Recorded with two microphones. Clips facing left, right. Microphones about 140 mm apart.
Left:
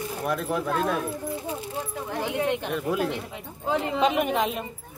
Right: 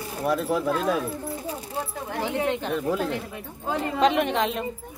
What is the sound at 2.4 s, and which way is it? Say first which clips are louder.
Speech: right 1 dB; 15° left (ahead or behind).